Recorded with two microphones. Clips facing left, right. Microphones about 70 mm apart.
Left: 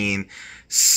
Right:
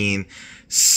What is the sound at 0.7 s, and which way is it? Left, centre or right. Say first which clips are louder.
Gasp: right 1 dB; left.